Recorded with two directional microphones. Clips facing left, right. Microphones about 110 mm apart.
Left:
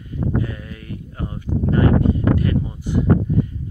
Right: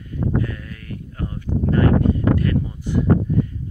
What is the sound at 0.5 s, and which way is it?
Sheep, 15° left (ahead or behind).